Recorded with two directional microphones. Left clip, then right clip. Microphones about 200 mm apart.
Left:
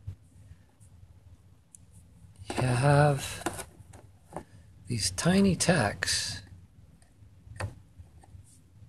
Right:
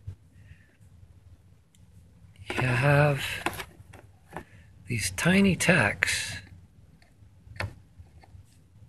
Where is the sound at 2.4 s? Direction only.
10° left (ahead or behind).